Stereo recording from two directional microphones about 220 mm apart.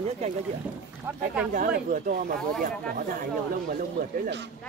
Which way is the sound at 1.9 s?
40° right (ahead or behind).